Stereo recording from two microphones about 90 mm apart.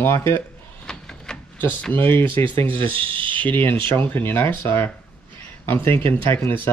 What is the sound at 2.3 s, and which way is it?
Speech, 65° right (ahead or behind).